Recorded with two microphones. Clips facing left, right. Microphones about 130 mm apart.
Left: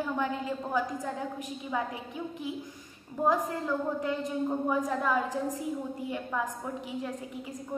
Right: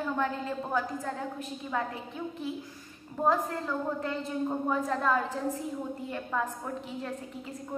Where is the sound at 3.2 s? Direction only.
15° left (ahead or behind).